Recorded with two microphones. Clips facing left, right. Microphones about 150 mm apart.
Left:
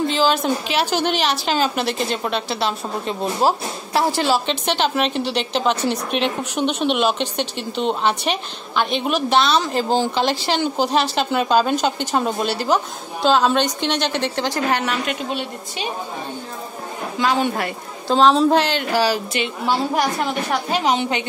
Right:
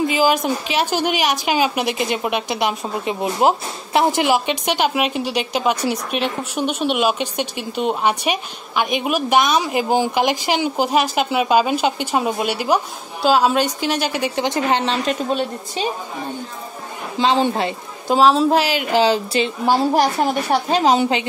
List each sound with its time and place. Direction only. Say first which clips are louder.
0.0 s a woman's voice: right 1 dB; 10° right (ahead or behind); by 15.9 s 35° right (ahead or behind)
17.2 s a woman's voice: right 3 dB; 25° right (ahead or behind)
18.1 s speech: even; 5° right (ahead or behind)
18.9 s a woman's voice: right 5 dB; 25° right (ahead or behind)